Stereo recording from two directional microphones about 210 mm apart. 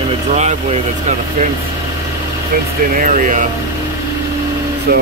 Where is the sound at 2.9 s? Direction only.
40° right (ahead or behind).